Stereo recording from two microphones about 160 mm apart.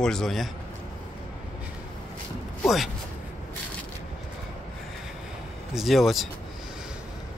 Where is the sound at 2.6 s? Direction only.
Centre (ahead or behind).